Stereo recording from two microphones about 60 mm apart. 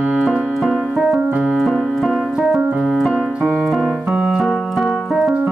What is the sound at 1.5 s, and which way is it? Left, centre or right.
Piano, centre.